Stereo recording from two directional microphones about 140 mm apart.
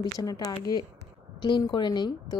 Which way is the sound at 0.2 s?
25° left (ahead or behind).